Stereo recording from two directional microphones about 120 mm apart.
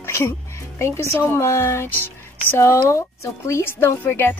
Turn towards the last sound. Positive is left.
turn(degrees=20)  # may be behind; listen again after turning